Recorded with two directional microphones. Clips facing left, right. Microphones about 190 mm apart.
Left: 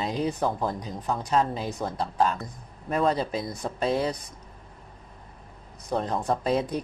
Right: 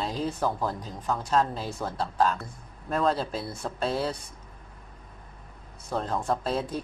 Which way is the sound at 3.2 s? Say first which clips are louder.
Left 3 dB; 15° left (ahead or behind).